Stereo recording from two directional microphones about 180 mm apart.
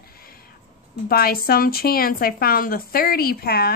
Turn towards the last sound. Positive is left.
turn(degrees=60)  # may be behind; listen again after turning